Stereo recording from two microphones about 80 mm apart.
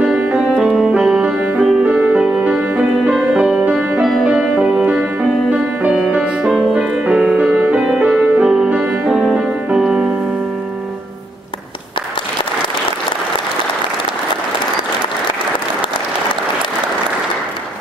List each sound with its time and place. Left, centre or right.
0.0 s music: centre